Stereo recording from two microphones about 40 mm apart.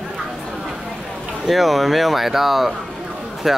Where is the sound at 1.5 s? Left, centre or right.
Centre.